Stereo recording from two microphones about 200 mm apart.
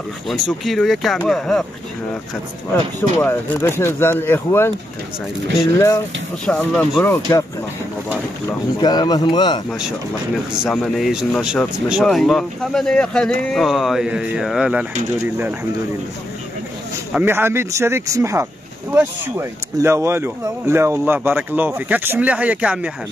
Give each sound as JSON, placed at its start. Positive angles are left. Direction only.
{"t": 0.3, "sound": "speech", "side_deg": 0}
{"t": 2.7, "sound": "speech", "side_deg": 10}
{"t": 6.4, "sound": "speech", "side_deg": 5}
{"t": 8.8, "sound": "speech", "side_deg": 20}
{"t": 10.6, "sound": "speech", "side_deg": 0}
{"t": 17.1, "sound": "speech", "side_deg": -10}